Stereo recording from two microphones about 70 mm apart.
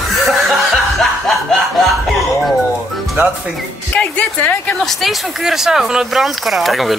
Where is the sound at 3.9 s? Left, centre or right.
Left.